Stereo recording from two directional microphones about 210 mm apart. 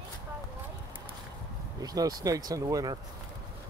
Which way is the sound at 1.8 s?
15° right (ahead or behind).